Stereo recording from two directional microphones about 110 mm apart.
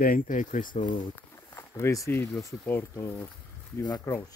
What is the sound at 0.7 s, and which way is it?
Speech, 90° left.